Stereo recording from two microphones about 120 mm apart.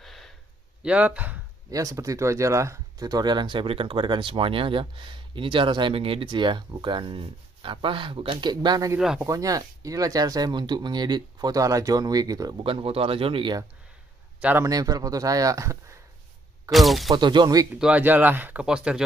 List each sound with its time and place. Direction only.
0.0 s a sound: centre (ahead or behind)
0.8 s speech: 10° right (ahead or behind)
1.7 s speech: 30° right (ahead or behind)
12.6 s speech: 50° right (ahead or behind)
14.6 s speech: 30° right (ahead or behind)
16.7 s speech: centre (ahead or behind)
17.1 s speech: 40° right (ahead or behind)
17.7 s speech: 10° right (ahead or behind)